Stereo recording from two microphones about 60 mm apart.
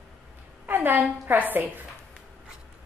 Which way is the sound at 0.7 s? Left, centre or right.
Right.